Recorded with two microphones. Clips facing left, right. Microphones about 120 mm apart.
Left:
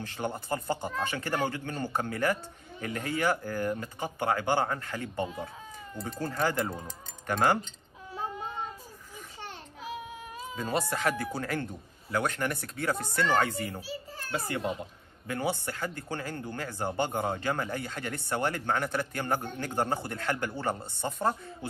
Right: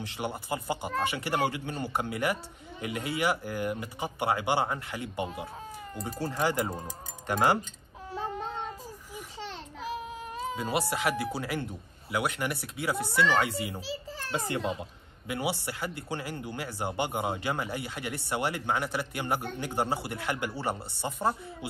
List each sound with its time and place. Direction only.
0.0 s speech: 15° right (ahead or behind)
8.1 s a sound: 75° right (ahead or behind)
9.4 s a sound: 90° right
10.2 s cat: 60° right (ahead or behind)
10.6 s speech: 10° right (ahead or behind)
13.8 s children playing: 90° right
14.3 s a child's voice: 20° right (ahead or behind)
15.2 s speech: 10° right (ahead or behind)